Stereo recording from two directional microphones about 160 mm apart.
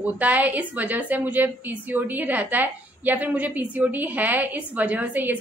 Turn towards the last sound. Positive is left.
turn(degrees=-10)  # may be behind; listen again after turning